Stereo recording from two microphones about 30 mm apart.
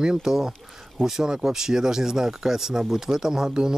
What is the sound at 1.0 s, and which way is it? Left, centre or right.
Speech, left.